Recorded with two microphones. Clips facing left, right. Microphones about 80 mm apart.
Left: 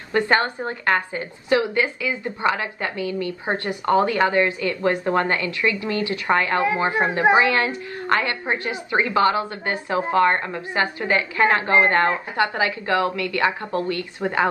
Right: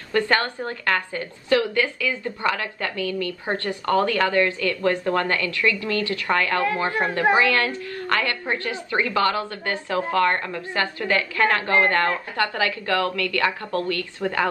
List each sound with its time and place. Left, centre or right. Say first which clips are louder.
0.1 s a woman's voice: left 2 dB; left